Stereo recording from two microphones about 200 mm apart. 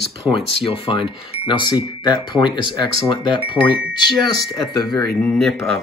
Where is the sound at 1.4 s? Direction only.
20° left (ahead or behind).